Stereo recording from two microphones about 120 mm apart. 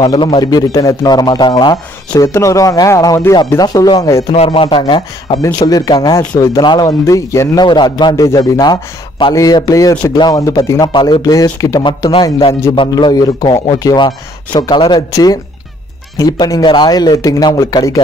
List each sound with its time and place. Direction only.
0.1 s a man's voice: 40° left (ahead or behind)
2.2 s a man's voice: 25° left (ahead or behind)
4.6 s a man's voice: 45° left (ahead or behind); by 7.6 s 25° left (ahead or behind)
7.6 s a man's voice: 40° left (ahead or behind)